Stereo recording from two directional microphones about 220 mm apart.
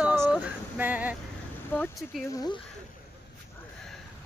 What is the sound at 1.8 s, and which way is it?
Speech, centre (ahead or behind).